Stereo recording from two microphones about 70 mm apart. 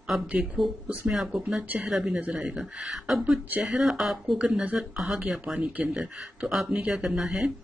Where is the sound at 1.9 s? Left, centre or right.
Centre.